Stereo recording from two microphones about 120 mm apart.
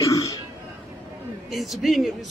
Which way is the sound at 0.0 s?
30° left (ahead or behind).